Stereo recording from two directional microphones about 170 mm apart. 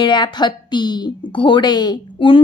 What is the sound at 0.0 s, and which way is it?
A woman's voice, 25° left (ahead or behind).